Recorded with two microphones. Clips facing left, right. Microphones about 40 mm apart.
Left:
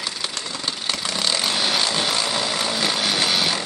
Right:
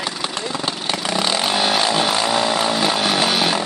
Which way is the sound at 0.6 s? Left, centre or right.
Centre.